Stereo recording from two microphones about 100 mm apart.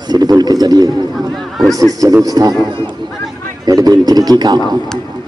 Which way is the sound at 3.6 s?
40° right (ahead or behind).